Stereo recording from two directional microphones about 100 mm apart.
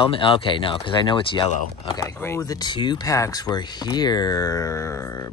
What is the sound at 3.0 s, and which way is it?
Speech, 35° left (ahead or behind).